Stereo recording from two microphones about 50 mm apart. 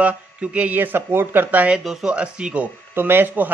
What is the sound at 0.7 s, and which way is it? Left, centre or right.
Speech, right.